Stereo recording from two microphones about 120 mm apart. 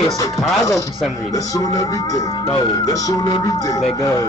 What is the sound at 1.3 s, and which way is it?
Speech, 30° left (ahead or behind).